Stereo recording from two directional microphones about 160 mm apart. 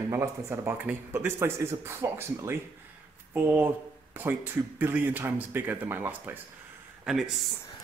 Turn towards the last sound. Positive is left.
turn(degrees=0)  # may be behind; listen again after turning